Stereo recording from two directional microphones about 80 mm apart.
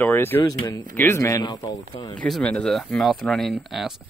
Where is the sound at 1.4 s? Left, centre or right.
Left.